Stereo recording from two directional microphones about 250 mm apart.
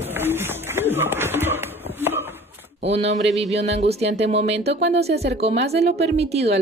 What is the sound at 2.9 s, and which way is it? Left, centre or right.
Speech, right.